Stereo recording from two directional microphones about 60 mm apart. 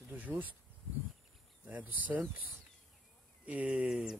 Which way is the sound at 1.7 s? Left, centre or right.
Right.